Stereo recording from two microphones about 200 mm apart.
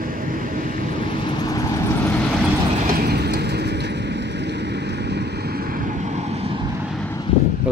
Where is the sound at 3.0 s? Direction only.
50° right (ahead or behind).